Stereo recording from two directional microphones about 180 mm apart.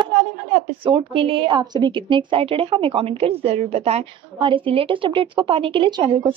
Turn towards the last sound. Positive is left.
turn(degrees=-30)  # may be behind; listen again after turning